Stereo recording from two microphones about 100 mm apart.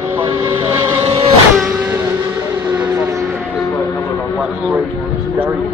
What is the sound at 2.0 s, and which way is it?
Vehicle, 25° right (ahead or behind).